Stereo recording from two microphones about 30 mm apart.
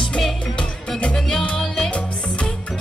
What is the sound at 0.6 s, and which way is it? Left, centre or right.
Music, left.